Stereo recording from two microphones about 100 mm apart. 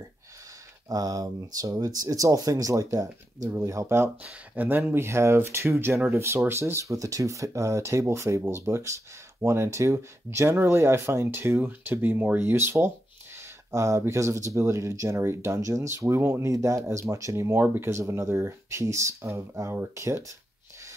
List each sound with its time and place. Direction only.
0.8 s speech: 40° right (ahead or behind)